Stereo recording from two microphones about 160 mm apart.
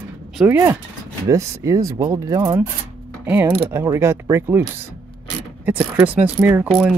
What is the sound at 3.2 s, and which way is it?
Speech, 15° right (ahead or behind).